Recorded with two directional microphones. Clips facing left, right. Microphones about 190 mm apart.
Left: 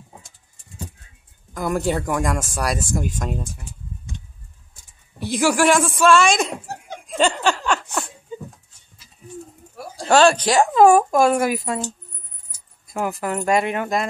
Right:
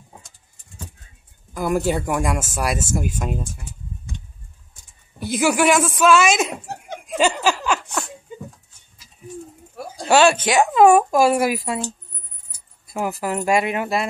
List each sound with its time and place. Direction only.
1.5 s speech: 5° right (ahead or behind)
5.2 s speech: 5° right (ahead or behind)
7.1 s laughter: 5° right (ahead or behind)
10.0 s speech: 5° right (ahead or behind)
12.9 s speech: 5° right (ahead or behind)